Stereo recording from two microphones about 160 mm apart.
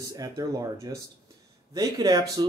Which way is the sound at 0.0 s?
20° right (ahead or behind).